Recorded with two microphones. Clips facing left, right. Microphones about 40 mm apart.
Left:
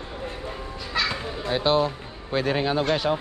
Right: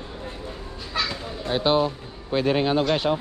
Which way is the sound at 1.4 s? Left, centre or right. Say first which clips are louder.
Right 1 dB; centre.